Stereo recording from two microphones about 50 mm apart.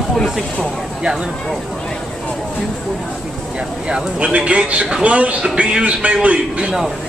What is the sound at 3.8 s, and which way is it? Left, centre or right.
A man's voice, right.